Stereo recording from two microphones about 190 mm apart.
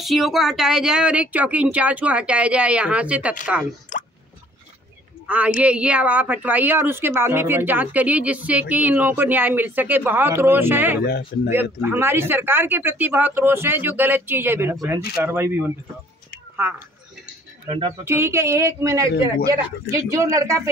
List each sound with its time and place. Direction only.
0.0 s a woman's voice: centre (ahead or behind)
3.9 s drip: 40° left (ahead or behind)
5.2 s a woman's voice: 5° right (ahead or behind)
11.0 s speech: 60° left (ahead or behind)
11.4 s a woman's voice: 10° right (ahead or behind)
17.6 s speech: 25° right (ahead or behind)
18.0 s a woman's voice: 15° right (ahead or behind)